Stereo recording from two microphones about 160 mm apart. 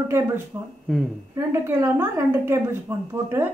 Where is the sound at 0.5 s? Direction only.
20° right (ahead or behind).